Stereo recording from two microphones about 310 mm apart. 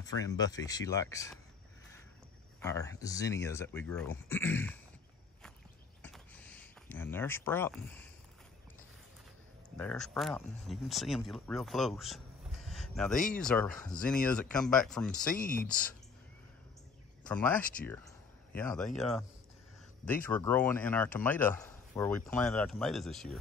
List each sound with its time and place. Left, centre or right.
0.0 s speech: centre
2.6 s speech: centre
6.0 s a sound: centre
9.8 s speech: centre
15.3 s speech: left
17.3 s speech: centre